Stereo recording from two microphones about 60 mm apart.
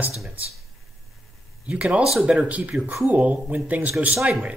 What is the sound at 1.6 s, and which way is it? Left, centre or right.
Speech, centre.